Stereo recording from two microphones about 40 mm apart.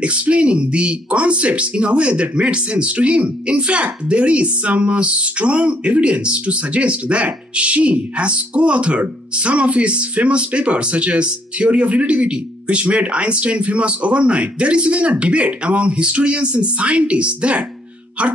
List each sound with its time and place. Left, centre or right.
0.0 s speech: right